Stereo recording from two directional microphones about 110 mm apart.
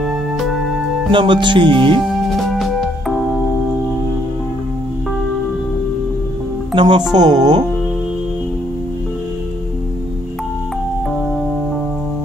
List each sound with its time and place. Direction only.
1.1 s speech: 45° right (ahead or behind)
2.3 s music: centre (ahead or behind)
6.7 s speech: 45° right (ahead or behind)